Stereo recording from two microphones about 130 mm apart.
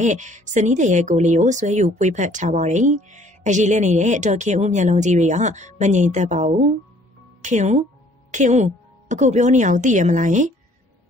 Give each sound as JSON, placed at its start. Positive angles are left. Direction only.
{"t": 0.0, "sound": "speech", "side_deg": -70}